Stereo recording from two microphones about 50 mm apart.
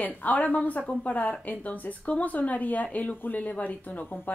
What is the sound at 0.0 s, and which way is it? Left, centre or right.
A woman's voice, left.